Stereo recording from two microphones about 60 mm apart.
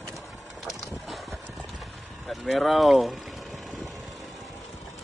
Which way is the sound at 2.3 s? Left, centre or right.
Centre.